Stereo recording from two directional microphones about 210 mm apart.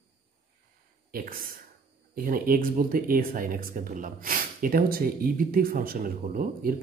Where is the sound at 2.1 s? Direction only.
45° right (ahead or behind).